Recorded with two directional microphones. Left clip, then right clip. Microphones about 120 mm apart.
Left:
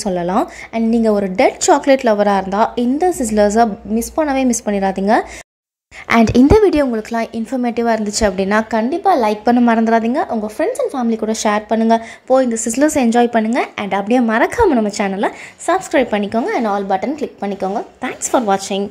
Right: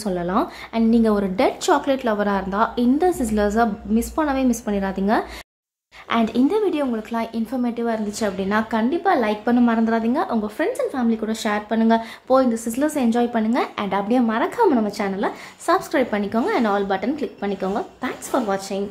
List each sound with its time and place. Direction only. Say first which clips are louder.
0.0 s speech: left 5 dB; 35° left (ahead or behind)
3.9 s speech: left 5 dB; 25° left (ahead or behind)
6.0 s speech: left 9 dB; 55° left (ahead or behind); by 10.2 s 35° left (ahead or behind)
10.2 s a woman's voice: left 4 dB; 20° left (ahead or behind)
14.0 s a woman's voice: left 9 dB; 35° left (ahead or behind)
18.3 s a woman's voice: left 8 dB; 45° left (ahead or behind)